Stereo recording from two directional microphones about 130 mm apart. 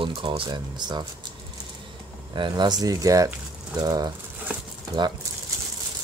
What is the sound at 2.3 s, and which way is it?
Speech, 35° right (ahead or behind).